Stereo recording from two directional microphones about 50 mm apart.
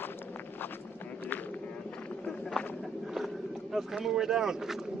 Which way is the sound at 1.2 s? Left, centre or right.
Left.